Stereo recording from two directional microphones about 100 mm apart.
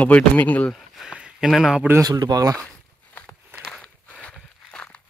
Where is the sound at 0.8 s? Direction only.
Centre (ahead or behind).